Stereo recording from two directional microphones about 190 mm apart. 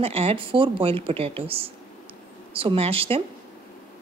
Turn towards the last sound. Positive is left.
turn(degrees=-30)  # may be behind; listen again after turning